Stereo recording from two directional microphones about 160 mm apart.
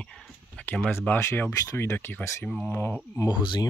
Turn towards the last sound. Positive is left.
turn(degrees=30)  # may be behind; listen again after turning